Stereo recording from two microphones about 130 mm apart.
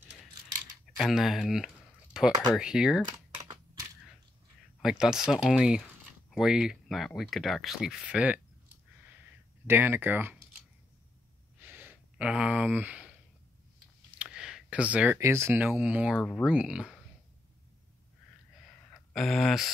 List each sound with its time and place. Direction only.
0.9 s speech: 5° right (ahead or behind)
2.1 s a sound: 5° right (ahead or behind)
2.5 s speech: 5° right (ahead or behind)
4.8 s speech: 5° right (ahead or behind)
9.0 s clicking: 15° right (ahead or behind)
11.6 s a sound: 15° right (ahead or behind)
14.1 s a sound: 5° right (ahead or behind)
15.1 s speech: 20° right (ahead or behind)
16.2 s speech: 10° left (ahead or behind)
16.4 s speech: 5° right (ahead or behind)
19.1 s speech: centre (ahead or behind)